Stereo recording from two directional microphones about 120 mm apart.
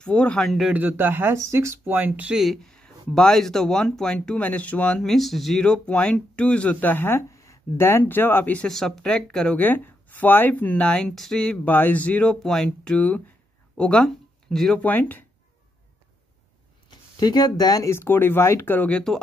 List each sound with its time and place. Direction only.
0.0 s speech: 10° left (ahead or behind)
0.7 s speech: 15° right (ahead or behind)
2.3 s speech: centre (ahead or behind)
17.2 s speech: 35° left (ahead or behind); by 19.2 s 10° left (ahead or behind)